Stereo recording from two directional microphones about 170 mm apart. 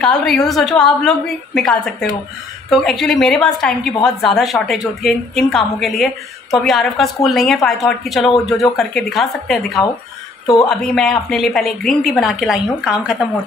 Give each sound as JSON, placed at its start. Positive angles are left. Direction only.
{"t": 0.0, "sound": "a woman's voice", "side_deg": 5}
{"t": 10.4, "sound": "a woman's voice", "side_deg": 25}
{"t": 10.7, "sound": "a woman's voice", "side_deg": 5}